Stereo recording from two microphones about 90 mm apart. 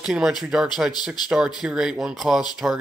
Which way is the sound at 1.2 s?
50° left (ahead or behind).